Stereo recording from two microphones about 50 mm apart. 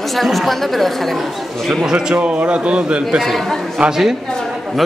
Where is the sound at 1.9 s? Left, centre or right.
Right.